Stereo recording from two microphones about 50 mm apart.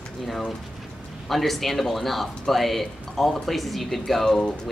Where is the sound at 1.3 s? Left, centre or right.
Centre.